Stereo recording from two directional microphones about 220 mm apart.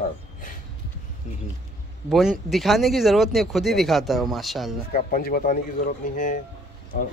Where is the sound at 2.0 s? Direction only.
Centre (ahead or behind).